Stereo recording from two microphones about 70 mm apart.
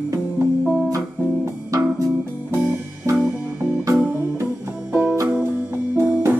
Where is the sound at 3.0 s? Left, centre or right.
Right.